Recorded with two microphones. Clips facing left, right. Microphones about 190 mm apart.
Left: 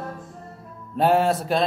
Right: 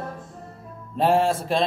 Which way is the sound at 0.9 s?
Centre (ahead or behind).